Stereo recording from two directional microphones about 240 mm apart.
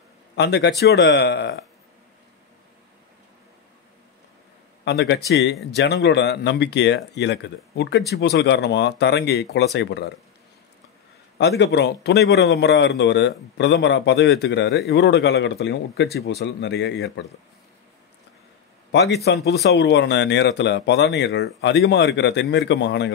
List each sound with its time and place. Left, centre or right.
0.4 s a man's voice: left
4.8 s a man's voice: left
11.3 s a man's voice: left
18.9 s a man's voice: left